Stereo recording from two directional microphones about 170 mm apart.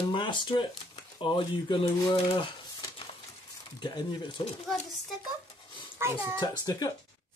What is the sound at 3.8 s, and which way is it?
Speech, 25° left (ahead or behind).